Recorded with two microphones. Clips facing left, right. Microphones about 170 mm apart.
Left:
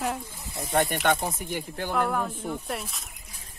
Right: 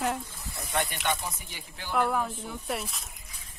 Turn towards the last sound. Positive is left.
turn(degrees=0)  # may be behind; listen again after turning